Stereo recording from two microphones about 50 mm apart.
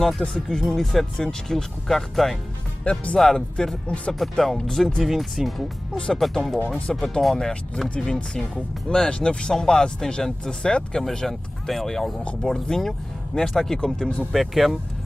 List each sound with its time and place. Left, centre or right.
0.2 s speech: centre
0.7 s speech: centre
2.8 s speech: left
3.2 s speech: centre
4.1 s speech: centre
5.0 s speech: centre
11.1 s speech: centre